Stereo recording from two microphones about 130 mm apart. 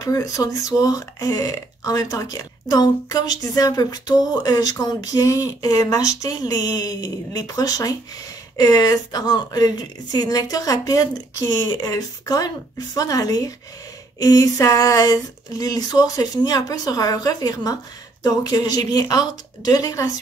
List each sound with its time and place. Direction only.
0.0 s speech: 30° left (ahead or behind)